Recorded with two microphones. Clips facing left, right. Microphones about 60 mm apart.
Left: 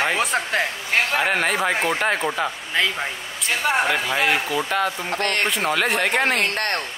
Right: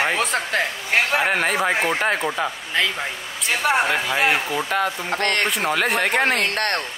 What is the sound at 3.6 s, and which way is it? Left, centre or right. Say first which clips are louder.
Speech: right 2 dB; centre.